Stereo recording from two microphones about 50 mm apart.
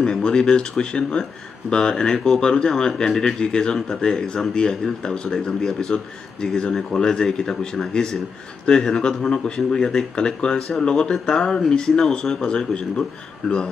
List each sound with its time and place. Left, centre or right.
0.0 s speech: centre